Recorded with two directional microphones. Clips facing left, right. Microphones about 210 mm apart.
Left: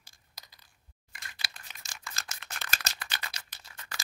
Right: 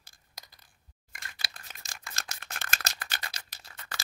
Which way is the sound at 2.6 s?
50° right (ahead or behind).